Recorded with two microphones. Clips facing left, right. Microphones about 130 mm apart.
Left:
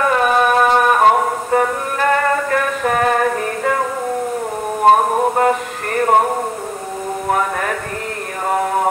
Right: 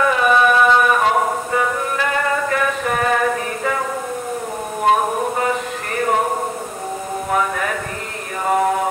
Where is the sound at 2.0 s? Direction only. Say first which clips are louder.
Left 6 dB; 45° left (ahead or behind).